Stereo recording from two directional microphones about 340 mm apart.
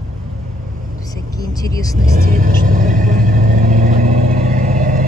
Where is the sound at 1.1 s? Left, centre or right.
Centre.